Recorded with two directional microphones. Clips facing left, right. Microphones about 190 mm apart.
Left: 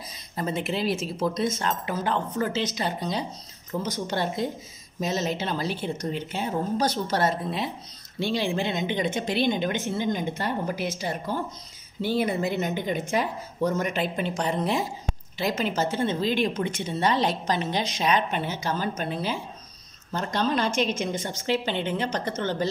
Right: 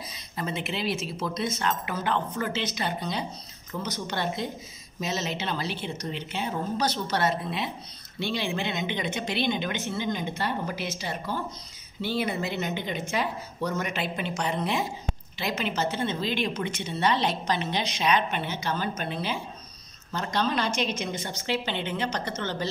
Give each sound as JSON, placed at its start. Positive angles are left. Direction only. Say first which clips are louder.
{"t": 0.4, "sound": "a woman's voice", "louder": "left 4 dB", "side_deg": 40}
{"t": 3.8, "sound": "a woman's voice", "louder": "left 2 dB", "side_deg": 45}